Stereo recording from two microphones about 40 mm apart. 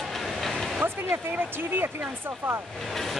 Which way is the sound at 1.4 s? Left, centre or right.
Right.